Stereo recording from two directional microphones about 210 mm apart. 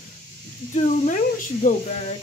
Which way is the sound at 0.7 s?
35° left (ahead or behind).